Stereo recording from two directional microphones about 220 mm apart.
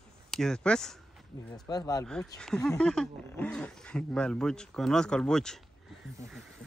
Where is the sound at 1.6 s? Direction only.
15° left (ahead or behind).